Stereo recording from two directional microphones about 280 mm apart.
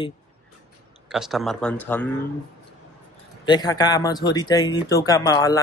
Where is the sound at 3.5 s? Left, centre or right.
Centre.